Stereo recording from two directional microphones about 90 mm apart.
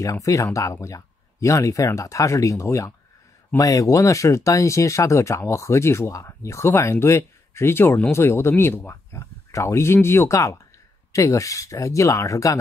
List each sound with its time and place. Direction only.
0.0 s speech: 35° left (ahead or behind)